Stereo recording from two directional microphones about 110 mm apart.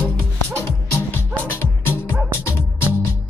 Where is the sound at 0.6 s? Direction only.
20° left (ahead or behind).